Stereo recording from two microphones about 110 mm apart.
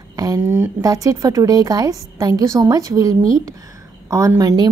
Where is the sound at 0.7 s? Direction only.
35° right (ahead or behind).